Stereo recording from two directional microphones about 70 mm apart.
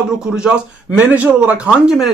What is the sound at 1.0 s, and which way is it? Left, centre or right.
Speech, right.